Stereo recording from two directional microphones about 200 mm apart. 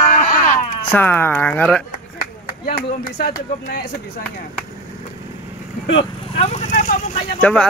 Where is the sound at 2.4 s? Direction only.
45° left (ahead or behind).